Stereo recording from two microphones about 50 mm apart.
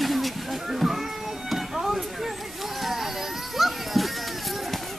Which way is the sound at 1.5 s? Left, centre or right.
Centre.